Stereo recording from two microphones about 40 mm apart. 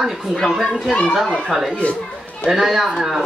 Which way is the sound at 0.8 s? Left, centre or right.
Centre.